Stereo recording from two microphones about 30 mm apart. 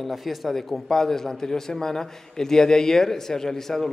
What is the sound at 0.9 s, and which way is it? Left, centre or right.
A man's voice, centre.